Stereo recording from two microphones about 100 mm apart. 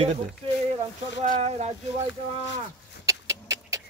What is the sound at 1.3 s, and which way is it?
Speech, 90° right.